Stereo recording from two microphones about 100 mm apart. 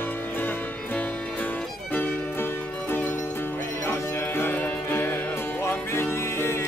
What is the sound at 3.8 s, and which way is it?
Music, 25° left (ahead or behind).